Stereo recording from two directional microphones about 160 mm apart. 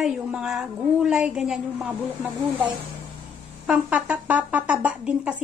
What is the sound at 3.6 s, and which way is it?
Speech, 5° right (ahead or behind).